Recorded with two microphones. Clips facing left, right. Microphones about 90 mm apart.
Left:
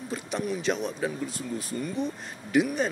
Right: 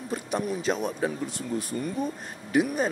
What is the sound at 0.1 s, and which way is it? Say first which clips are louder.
Speech: right 2 dB; 40° right (ahead or behind).